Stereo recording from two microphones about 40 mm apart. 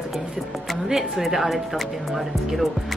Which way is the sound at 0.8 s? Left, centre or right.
Centre.